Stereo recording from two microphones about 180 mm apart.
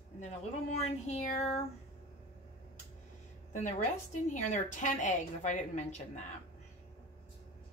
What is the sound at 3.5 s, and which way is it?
A woman's voice, 45° left (ahead or behind).